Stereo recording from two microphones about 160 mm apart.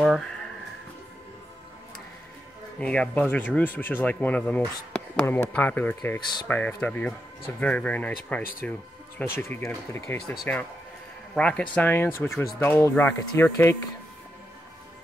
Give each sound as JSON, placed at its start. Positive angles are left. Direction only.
{"t": 0.0, "sound": "a sound", "side_deg": 0}
{"t": 2.8, "sound": "speech", "side_deg": 5}
{"t": 10.3, "sound": "speech", "side_deg": 0}